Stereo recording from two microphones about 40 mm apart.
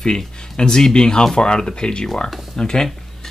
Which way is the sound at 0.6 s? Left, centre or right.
Centre.